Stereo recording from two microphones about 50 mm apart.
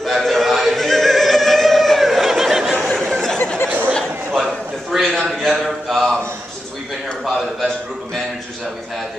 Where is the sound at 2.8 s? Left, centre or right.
Centre.